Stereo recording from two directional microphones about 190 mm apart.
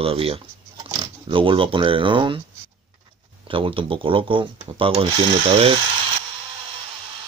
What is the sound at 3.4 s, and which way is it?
Speech, 25° right (ahead or behind).